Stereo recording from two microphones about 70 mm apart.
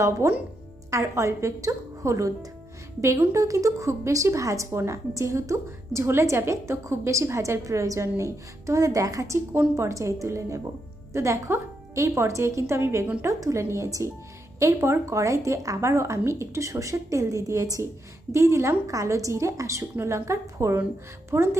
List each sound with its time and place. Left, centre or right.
0.2 s a woman's voice: right